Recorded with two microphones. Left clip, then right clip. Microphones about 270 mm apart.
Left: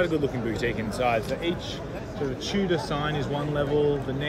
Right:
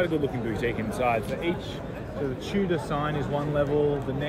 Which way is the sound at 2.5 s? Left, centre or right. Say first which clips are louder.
Left 1 dB; centre.